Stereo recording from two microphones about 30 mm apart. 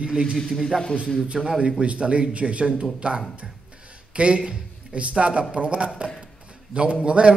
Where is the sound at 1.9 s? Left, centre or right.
Right.